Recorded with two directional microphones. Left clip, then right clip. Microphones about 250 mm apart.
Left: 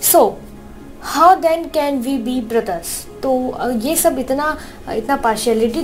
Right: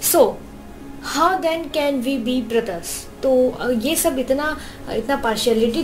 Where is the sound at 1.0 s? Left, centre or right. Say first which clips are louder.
Left 7 dB; centre.